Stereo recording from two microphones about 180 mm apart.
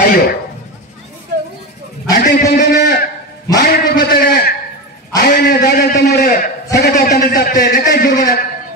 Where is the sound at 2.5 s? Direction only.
65° left (ahead or behind).